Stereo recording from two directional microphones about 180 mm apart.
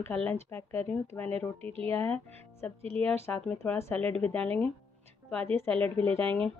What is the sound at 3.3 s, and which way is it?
Speech, 10° left (ahead or behind).